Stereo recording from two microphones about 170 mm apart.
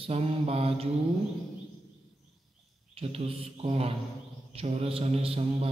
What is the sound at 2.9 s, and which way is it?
A man's voice, 35° right (ahead or behind).